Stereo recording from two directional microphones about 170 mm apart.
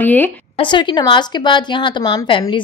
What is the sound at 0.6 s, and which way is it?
A woman's voice, 25° left (ahead or behind).